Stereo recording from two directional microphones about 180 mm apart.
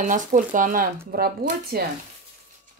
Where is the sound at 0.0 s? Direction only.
45° right (ahead or behind).